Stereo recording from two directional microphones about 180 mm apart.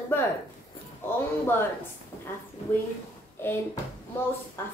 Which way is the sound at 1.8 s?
10° left (ahead or behind).